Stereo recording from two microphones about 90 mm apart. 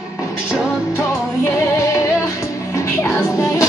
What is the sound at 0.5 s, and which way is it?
Music, 10° right (ahead or behind).